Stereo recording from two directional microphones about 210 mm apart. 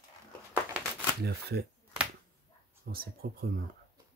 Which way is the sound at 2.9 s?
45° right (ahead or behind).